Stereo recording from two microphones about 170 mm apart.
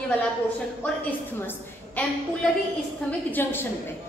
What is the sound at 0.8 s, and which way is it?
Speech, 5° left (ahead or behind).